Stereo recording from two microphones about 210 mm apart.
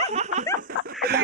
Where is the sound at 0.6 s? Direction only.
45° right (ahead or behind).